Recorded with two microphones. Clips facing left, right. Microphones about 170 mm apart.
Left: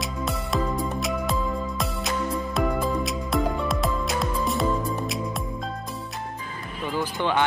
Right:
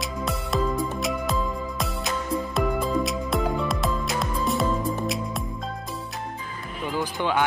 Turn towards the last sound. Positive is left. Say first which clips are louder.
# even
turn(degrees=-10)  # may be behind; listen again after turning